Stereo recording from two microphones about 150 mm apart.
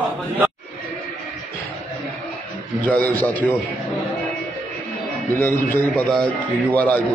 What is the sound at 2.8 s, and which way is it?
Speech, 10° left (ahead or behind).